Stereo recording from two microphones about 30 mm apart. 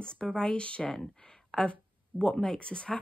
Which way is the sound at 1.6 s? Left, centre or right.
Left.